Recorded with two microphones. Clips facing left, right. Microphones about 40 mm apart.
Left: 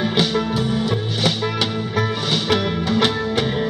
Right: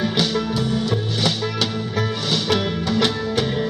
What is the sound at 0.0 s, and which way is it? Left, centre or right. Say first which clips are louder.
Music: left 2 dB; centre.